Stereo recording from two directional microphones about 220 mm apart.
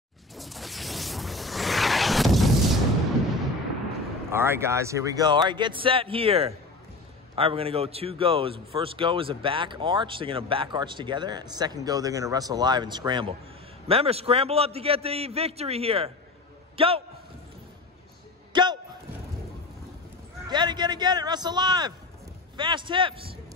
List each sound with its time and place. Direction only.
0.4 s a sound: centre (ahead or behind)
4.3 s a man's voice: 10° right (ahead or behind)
18.5 s a man's voice: 20° right (ahead or behind)
20.4 s speech: 20° right (ahead or behind)